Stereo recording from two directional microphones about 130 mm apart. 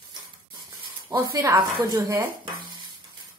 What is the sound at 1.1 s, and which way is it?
A woman's voice, 30° right (ahead or behind).